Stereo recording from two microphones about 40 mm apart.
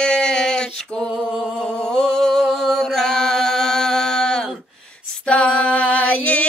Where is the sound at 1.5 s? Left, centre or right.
Centre.